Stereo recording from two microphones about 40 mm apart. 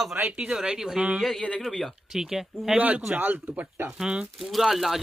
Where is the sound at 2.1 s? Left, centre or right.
Centre.